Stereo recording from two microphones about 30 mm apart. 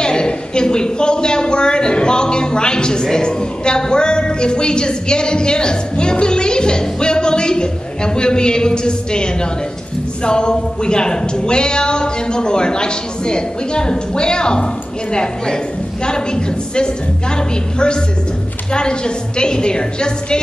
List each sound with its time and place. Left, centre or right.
0.0 s a man's voice: left
18.7 s a woman's voice: left